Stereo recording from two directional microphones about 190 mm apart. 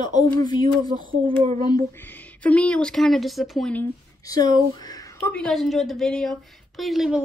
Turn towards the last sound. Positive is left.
turn(degrees=0)  # may be behind; listen again after turning